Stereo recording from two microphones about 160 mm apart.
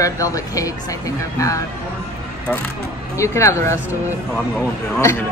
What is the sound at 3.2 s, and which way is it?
Speech, 20° left (ahead or behind).